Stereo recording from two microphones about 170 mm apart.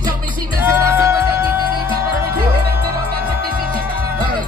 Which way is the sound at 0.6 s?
15° right (ahead or behind).